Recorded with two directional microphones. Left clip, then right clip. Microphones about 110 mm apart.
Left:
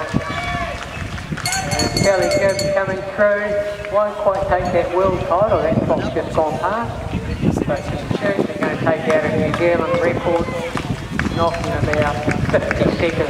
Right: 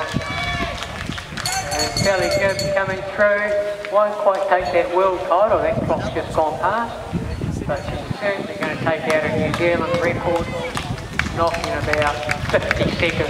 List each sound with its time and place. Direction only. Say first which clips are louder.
2.0 s speech: left 3 dB; 25° right (ahead or behind)
5.9 s speech: left 2 dB; 15° right (ahead or behind)
6.4 s speech: right 2 dB; 30° right (ahead or behind)
8.5 s speech: left 3 dB; 20° right (ahead or behind)